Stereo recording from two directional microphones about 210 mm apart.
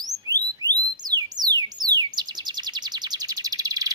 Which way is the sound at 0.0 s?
15° right (ahead or behind).